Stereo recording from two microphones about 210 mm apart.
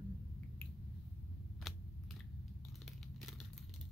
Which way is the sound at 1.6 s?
Centre (ahead or behind).